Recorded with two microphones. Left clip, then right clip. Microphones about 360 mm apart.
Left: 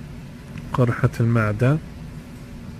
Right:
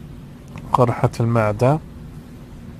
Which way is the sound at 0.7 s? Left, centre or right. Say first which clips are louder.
Right 6 dB; centre.